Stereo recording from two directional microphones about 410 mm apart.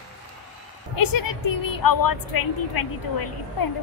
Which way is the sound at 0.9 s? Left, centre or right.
Left.